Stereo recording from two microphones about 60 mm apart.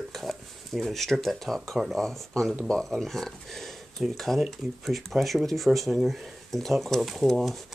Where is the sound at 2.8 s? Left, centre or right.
Centre.